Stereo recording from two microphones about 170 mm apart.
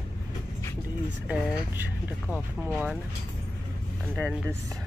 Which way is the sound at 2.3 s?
10° right (ahead or behind).